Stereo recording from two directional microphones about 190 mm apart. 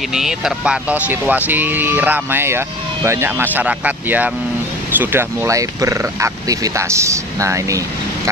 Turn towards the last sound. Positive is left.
turn(degrees=-15)  # may be behind; listen again after turning